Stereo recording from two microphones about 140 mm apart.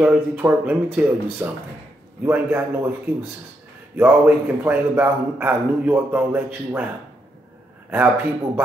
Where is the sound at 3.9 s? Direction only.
15° right (ahead or behind).